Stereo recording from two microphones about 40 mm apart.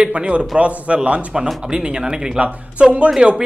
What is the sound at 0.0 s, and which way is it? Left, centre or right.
A man's voice, right.